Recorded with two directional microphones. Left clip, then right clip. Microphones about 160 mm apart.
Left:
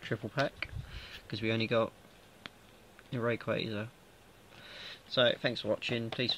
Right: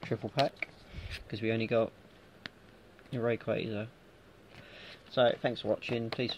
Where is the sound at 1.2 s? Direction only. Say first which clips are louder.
Even; 15° left (ahead or behind).